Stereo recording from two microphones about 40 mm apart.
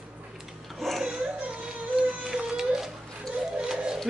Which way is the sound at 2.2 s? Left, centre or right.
Centre.